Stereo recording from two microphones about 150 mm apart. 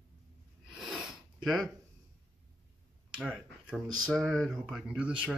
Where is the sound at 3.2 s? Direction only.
Centre (ahead or behind).